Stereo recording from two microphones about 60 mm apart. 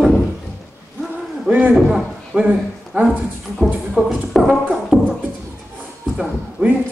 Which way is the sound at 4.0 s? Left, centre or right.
Centre.